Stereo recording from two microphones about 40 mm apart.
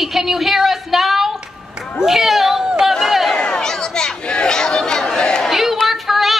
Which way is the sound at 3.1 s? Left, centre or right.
Centre.